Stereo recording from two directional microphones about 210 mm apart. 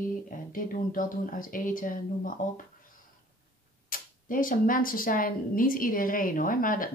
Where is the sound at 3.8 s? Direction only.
40° left (ahead or behind).